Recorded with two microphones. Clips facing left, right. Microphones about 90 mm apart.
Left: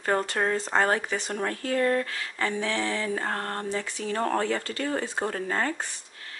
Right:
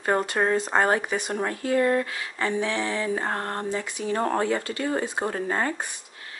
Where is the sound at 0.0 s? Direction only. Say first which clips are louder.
Right 2 dB; 15° right (ahead or behind).